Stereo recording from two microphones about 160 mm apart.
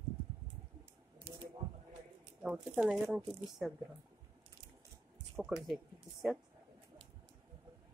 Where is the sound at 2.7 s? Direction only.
Centre (ahead or behind).